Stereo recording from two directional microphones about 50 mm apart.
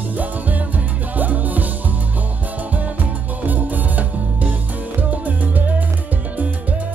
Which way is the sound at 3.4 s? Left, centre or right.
Right.